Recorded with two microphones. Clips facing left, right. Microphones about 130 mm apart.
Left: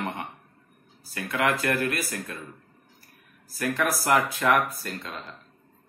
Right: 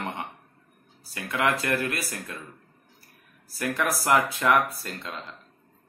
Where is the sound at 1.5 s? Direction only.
20° right (ahead or behind).